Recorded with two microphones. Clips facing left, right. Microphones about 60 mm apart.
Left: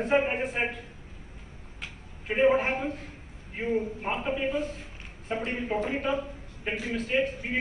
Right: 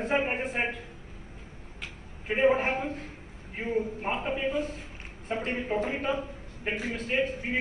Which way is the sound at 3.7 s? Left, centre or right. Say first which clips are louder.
Even; right.